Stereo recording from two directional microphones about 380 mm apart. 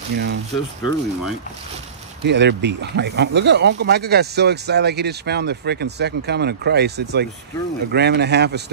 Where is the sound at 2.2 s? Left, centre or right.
Right.